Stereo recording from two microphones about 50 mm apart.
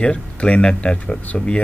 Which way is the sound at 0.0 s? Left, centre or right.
Left.